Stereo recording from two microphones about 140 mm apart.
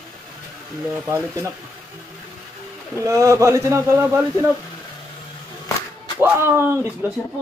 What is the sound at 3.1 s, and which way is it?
Speech, 20° right (ahead or behind).